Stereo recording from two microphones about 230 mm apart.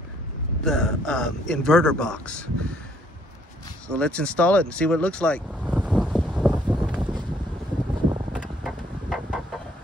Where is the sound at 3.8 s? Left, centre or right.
Centre.